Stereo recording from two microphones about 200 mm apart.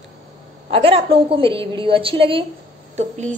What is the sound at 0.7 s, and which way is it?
A woman's voice, 30° right (ahead or behind).